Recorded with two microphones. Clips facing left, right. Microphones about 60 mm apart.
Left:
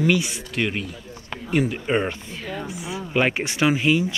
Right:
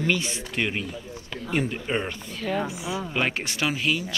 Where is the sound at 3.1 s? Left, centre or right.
Centre.